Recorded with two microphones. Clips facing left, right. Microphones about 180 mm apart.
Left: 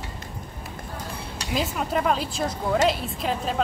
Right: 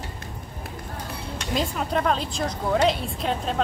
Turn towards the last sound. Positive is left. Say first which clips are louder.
# even
turn(degrees=0)  # may be behind; listen again after turning